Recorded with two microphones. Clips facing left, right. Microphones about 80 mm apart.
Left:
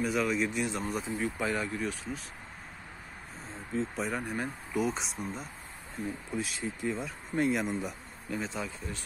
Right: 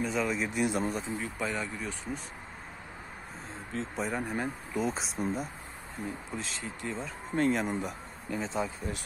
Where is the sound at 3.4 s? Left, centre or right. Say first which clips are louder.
Left 4 dB; centre.